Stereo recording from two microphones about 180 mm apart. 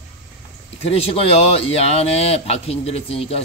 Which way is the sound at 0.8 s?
35° left (ahead or behind).